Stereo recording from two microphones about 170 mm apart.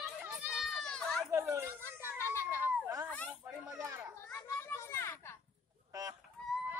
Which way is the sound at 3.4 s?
15° right (ahead or behind).